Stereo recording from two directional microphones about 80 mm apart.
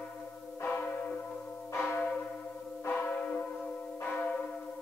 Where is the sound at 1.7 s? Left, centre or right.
Left.